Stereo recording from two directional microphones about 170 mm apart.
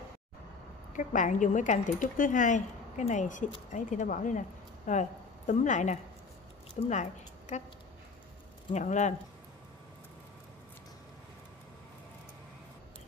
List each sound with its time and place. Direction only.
0.9 s a woman's voice: 50° left (ahead or behind)
8.7 s speech: 45° left (ahead or behind)